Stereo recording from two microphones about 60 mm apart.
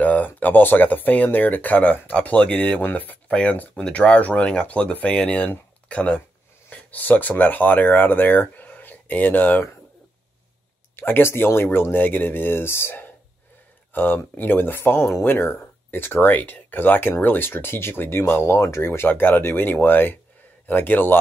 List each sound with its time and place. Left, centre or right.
0.0 s a sound: left
0.4 s speech: left
11.0 s speech: left
13.9 s speech: left
18.4 s speech: left